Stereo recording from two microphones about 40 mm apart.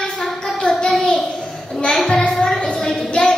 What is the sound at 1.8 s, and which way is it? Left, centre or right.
Child singing, left.